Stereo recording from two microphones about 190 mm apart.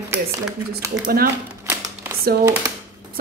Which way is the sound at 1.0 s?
50° right (ahead or behind).